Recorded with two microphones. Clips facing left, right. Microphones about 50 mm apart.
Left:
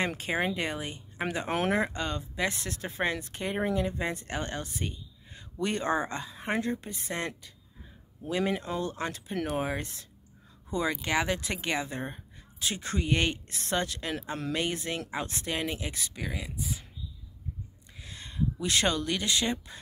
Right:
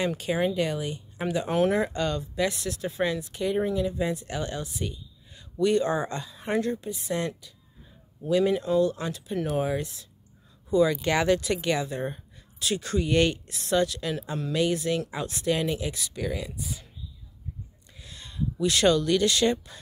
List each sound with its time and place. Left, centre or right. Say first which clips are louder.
0.0 s speech: right 3 dB; left
1.8 s speech: right 4 dB; left
10.7 s speech: right 8 dB; left
11.1 s speech: right 5 dB; centre
11.4 s speech: right 5 dB; left
13.5 s speech: right 6 dB; left
16.2 s speech: right 7 dB; centre
16.5 s speech: even; left
17.9 s speech: even; left